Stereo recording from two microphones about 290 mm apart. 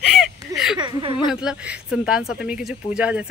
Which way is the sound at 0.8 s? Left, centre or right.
Centre.